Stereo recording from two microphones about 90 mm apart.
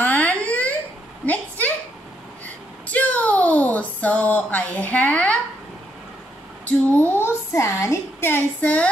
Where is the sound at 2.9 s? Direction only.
15° left (ahead or behind).